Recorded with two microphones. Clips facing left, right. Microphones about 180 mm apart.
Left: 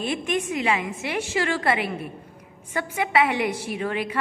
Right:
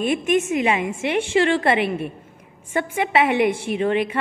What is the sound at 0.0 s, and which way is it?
A woman's voice, 20° right (ahead or behind).